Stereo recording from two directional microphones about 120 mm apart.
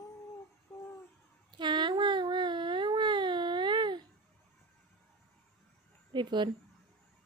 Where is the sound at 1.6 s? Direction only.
40° right (ahead or behind).